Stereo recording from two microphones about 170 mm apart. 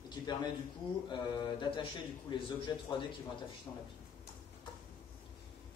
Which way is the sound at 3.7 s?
15° left (ahead or behind).